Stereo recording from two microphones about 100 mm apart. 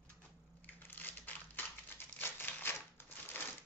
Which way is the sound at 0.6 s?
20° left (ahead or behind).